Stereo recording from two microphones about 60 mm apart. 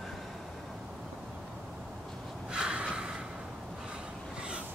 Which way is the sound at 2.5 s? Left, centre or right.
Centre.